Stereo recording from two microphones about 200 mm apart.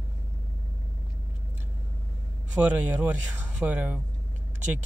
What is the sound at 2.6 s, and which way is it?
Speech, 5° right (ahead or behind).